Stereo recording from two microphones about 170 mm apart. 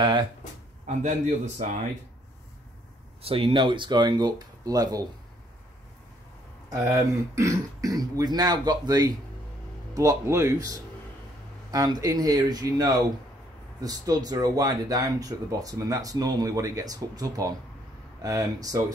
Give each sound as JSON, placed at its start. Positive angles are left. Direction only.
{"t": 0.0, "sound": "speech", "side_deg": -25}
{"t": 0.8, "sound": "a man's voice", "side_deg": -45}
{"t": 3.2, "sound": "speech", "side_deg": -35}
{"t": 6.7, "sound": "speech", "side_deg": -20}